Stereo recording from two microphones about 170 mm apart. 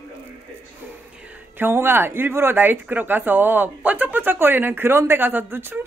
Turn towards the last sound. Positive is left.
turn(degrees=-15)  # may be behind; listen again after turning